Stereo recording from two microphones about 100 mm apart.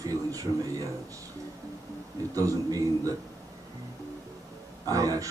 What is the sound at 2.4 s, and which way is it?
Speech, 35° right (ahead or behind).